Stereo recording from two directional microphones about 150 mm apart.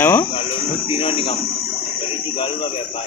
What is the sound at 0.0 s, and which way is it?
Speech, 15° left (ahead or behind).